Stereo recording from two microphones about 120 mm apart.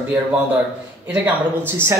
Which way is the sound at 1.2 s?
15° right (ahead or behind).